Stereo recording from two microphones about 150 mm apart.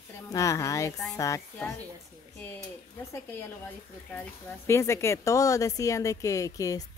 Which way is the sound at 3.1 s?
15° left (ahead or behind).